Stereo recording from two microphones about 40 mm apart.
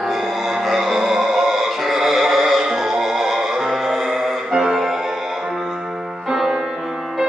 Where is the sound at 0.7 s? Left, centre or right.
Centre.